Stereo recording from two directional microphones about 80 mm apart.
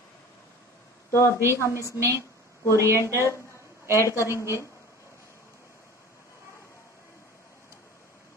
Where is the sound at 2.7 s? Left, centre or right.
Right.